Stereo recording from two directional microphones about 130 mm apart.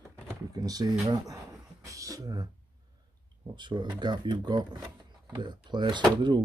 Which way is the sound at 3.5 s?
35° right (ahead or behind).